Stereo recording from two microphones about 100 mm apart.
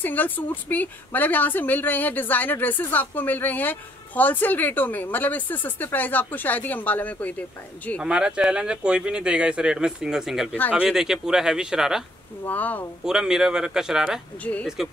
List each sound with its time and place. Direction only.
0.0 s a woman's voice: 15° left (ahead or behind)
8.0 s speech: 10° right (ahead or behind)
12.4 s a woman's voice: 15° left (ahead or behind)
13.0 s speech: 5° right (ahead or behind)
14.4 s a woman's voice: 15° left (ahead or behind)